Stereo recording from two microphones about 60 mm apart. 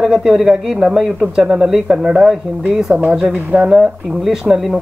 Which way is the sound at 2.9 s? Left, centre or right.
Right.